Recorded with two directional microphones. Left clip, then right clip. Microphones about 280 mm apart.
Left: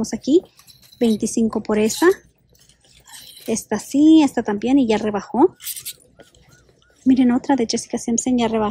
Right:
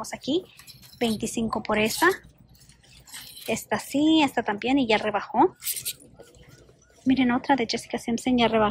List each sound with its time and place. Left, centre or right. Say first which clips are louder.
0.1 s speech: left 11 dB; left
3.4 s speech: left 4 dB; centre
5.6 s a sound: left 1 dB; centre
7.1 s speech: left 5 dB; centre